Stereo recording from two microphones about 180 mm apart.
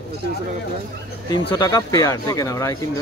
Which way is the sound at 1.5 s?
20° left (ahead or behind).